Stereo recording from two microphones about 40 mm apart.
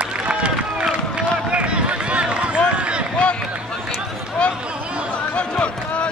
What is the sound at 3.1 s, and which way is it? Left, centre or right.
Run, left.